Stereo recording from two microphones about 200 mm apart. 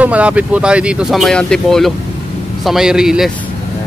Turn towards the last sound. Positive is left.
turn(degrees=-5)  # may be behind; listen again after turning